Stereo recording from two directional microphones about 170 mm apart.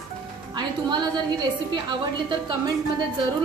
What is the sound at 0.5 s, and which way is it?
Speech, 25° right (ahead or behind).